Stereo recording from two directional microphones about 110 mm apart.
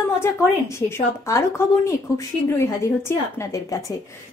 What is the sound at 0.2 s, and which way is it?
Speech, 25° left (ahead or behind).